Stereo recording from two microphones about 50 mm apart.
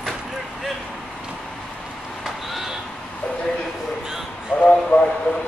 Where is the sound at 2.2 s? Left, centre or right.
Centre.